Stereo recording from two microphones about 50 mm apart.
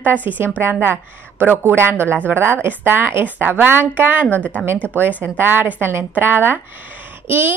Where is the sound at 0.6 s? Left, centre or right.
Right.